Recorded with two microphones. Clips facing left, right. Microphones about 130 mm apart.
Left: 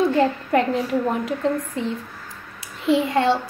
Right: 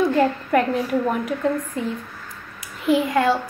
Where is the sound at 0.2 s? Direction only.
25° left (ahead or behind).